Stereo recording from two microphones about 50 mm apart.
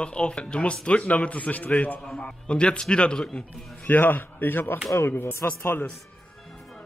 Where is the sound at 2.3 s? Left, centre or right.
Left.